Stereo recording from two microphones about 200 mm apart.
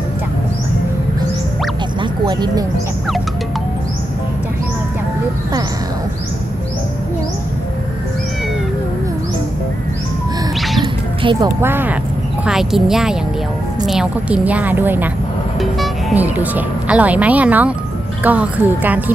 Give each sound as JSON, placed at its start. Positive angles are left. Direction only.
{"t": 2.0, "sound": "music", "side_deg": -20}
{"t": 10.8, "sound": "music", "side_deg": -20}
{"t": 12.4, "sound": "a woman's voice", "side_deg": 0}